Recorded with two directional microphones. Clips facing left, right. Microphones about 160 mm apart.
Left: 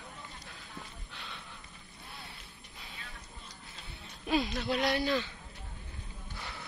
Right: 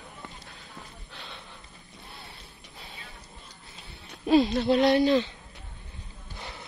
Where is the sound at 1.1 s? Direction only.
35° right (ahead or behind).